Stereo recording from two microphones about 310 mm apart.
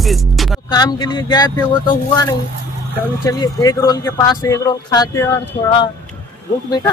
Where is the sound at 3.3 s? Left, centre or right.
Centre.